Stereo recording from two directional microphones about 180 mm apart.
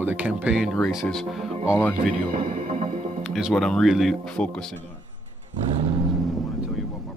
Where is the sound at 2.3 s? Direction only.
40° right (ahead or behind).